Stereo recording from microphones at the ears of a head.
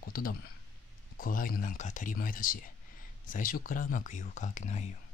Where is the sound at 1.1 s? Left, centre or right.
Left.